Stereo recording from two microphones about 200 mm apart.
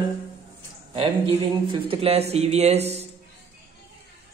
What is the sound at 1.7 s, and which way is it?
Speech, 30° right (ahead or behind).